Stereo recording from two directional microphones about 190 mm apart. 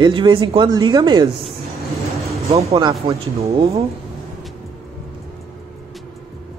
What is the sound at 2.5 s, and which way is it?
Speech, 30° right (ahead or behind).